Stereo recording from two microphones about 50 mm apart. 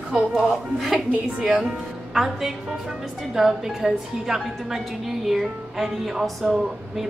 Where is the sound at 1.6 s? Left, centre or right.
Centre.